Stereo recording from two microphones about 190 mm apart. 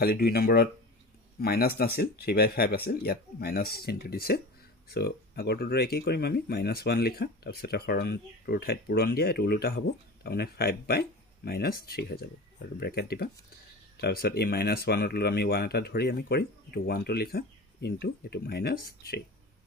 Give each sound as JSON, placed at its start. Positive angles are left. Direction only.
{"t": 0.0, "sound": "speech", "side_deg": 55}